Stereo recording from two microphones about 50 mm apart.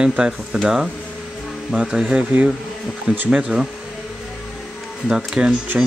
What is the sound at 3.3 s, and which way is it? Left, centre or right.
Speech, centre.